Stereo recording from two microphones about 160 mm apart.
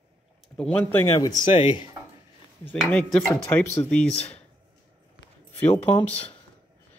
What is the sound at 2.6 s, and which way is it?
Speech, 5° left (ahead or behind).